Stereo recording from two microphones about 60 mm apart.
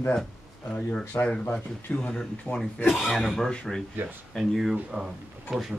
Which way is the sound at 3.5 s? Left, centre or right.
Centre.